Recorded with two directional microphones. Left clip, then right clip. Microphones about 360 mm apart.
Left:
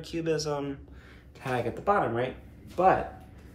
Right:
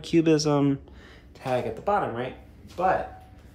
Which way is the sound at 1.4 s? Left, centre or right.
Centre.